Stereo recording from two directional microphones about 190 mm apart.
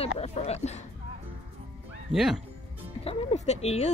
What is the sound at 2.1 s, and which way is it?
Speech, centre (ahead or behind).